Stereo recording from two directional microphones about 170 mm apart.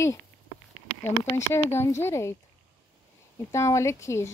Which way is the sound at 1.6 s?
15° left (ahead or behind).